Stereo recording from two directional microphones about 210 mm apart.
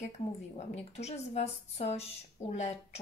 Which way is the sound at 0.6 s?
30° left (ahead or behind).